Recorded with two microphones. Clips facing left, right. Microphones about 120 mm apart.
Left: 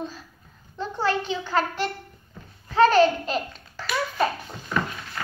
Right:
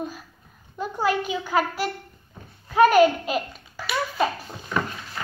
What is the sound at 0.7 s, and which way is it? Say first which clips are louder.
A child's voice: right 1 dB; 10° right (ahead or behind).